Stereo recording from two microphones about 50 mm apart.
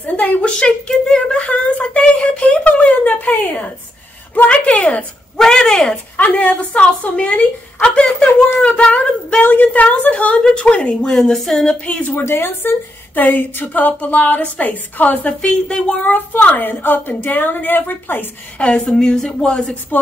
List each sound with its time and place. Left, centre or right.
0.0 s a sound: left
4.5 s a woman's voice: left
5.4 s speech: centre
6.1 s a woman's voice: left
9.4 s a woman's voice: left; by 11.6 s centre
11.6 s a woman's voice: left
12.3 s speech: left
13.1 s a woman's voice: left
15.2 s a woman's voice: left
16.1 s a woman's voice: left
18.9 s a woman's voice: centre
19.9 s speech: left